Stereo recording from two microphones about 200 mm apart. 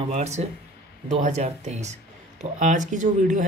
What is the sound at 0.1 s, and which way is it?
Speech, 35° right (ahead or behind).